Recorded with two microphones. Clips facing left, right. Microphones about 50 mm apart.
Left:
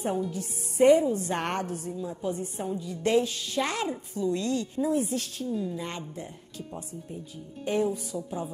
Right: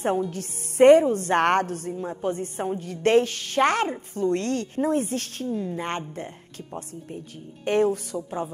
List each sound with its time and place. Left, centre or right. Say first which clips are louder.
0.3 s a woman's voice: right 1 dB; right
7.6 s a woman's voice: right 5 dB; right